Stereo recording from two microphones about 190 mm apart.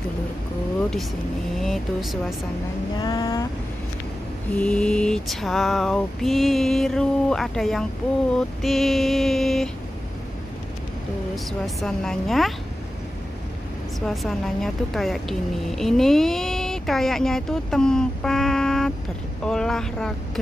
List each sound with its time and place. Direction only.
1.6 s speech: centre (ahead or behind)
3.0 s vehicle: 20° left (ahead or behind)
4.6 s speech: 5° left (ahead or behind)
11.3 s speech: centre (ahead or behind)
14.0 s speech: centre (ahead or behind)